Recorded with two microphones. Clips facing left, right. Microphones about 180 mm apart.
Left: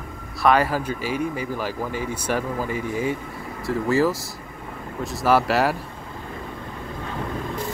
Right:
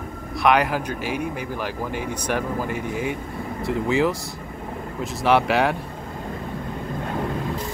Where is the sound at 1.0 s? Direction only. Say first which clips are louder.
Left 1 dB; 55° right (ahead or behind).